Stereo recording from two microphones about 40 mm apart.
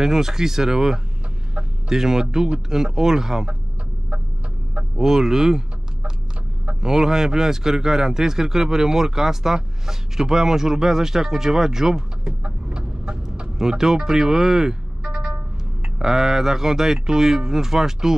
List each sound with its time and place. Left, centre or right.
0.0 s speech: centre
1.5 s chicken: right
2.0 s speech: centre
4.9 s speech: centre
6.8 s speech: centre
12.4 s chicken: right
13.6 s speech: centre